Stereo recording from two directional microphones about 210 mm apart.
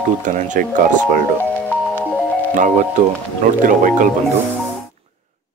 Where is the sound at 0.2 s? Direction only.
40° right (ahead or behind).